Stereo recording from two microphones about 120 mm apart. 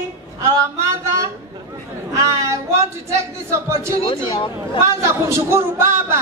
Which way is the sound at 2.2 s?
25° right (ahead or behind).